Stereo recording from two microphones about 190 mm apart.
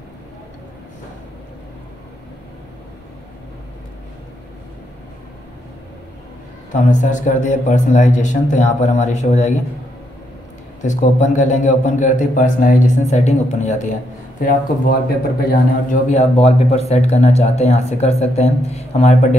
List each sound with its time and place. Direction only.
6.7 s a man's voice: 40° left (ahead or behind)
10.8 s a man's voice: 40° left (ahead or behind)